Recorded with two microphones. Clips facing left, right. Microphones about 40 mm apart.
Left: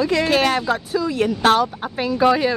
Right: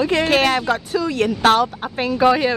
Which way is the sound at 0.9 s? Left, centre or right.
Right.